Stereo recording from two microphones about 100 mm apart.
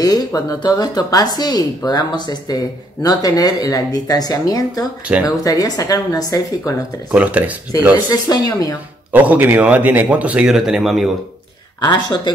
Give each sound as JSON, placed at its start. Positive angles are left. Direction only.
{"t": 0.0, "sound": "speech", "side_deg": 35}
{"t": 5.0, "sound": "speech", "side_deg": -10}
{"t": 5.4, "sound": "speech", "side_deg": 35}
{"t": 7.1, "sound": "speech", "side_deg": -15}
{"t": 8.1, "sound": "speech", "side_deg": 40}
{"t": 9.1, "sound": "speech", "side_deg": -15}
{"t": 10.5, "sound": "speech", "side_deg": -5}
{"t": 11.8, "sound": "speech", "side_deg": 50}